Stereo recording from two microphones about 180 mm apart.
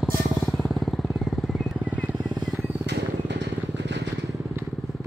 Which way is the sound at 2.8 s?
75° right (ahead or behind).